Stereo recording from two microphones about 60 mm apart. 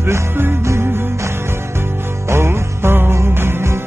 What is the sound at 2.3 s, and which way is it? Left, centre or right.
Music, right.